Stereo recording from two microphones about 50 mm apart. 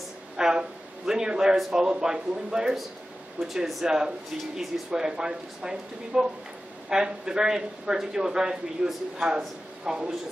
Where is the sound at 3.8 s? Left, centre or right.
Centre.